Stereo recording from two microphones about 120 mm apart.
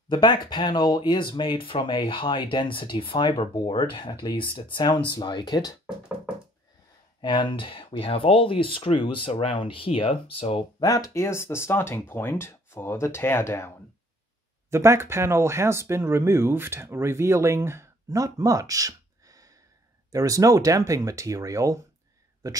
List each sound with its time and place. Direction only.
0.1 s speech: 40° left (ahead or behind)
7.2 s speech: 40° left (ahead or behind)
10.8 s speech: 30° left (ahead or behind)
14.7 s speech: 20° right (ahead or behind)